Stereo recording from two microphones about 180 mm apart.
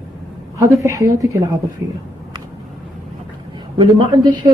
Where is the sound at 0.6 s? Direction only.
15° right (ahead or behind).